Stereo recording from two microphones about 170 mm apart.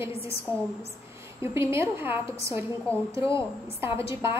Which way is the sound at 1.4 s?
15° right (ahead or behind).